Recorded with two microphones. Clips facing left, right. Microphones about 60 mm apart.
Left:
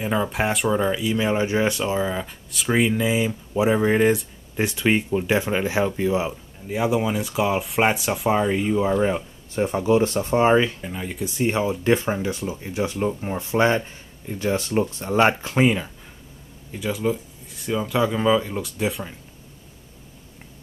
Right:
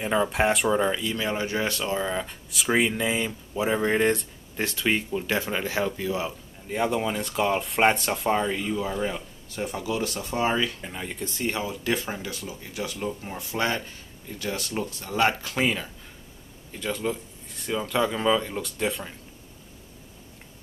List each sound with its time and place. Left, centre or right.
0.0 s speech: centre
1.2 s speech: left; by 4.3 s centre
4.6 s speech: centre
6.7 s speech: centre; by 10.8 s left
10.8 s speech: centre
11.4 s speech: left
16.7 s speech: centre